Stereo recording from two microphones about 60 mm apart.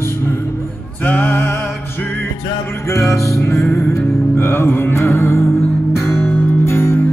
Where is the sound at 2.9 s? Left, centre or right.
Left.